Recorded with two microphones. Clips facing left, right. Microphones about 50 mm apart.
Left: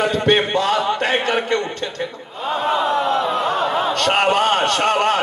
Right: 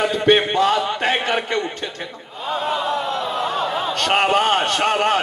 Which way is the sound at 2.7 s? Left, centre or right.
Centre.